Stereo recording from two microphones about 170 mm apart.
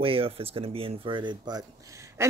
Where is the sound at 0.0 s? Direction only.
35° right (ahead or behind).